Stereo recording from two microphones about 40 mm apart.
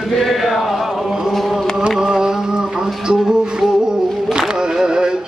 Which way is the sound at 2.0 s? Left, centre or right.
Centre.